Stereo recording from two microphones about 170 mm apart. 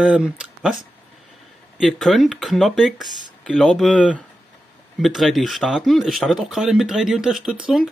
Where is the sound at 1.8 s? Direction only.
Centre (ahead or behind).